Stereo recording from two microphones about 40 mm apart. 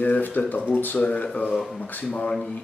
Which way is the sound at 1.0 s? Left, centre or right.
Left.